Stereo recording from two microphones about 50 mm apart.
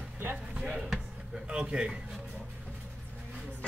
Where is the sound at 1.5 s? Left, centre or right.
Centre.